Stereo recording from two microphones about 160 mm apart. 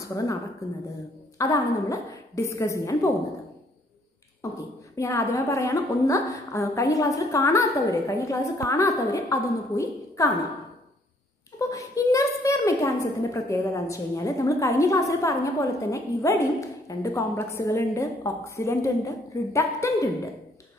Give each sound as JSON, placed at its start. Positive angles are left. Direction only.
{"t": 0.0, "sound": "a woman's voice", "side_deg": 20}
{"t": 1.4, "sound": "a woman's voice", "side_deg": 20}
{"t": 4.4, "sound": "a woman's voice", "side_deg": 20}
{"t": 11.7, "sound": "a sound", "side_deg": 20}
{"t": 12.4, "sound": "a woman's voice", "side_deg": 20}